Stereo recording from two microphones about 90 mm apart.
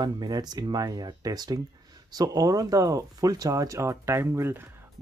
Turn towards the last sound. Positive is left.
turn(degrees=-25)  # may be behind; listen again after turning